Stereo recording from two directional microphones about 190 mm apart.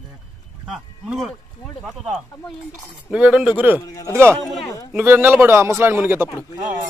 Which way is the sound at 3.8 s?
20° left (ahead or behind).